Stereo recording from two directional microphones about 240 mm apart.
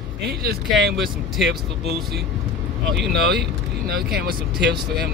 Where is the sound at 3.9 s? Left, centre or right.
Right.